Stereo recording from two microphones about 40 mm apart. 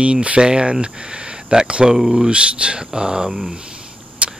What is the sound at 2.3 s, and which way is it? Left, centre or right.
Speech, right.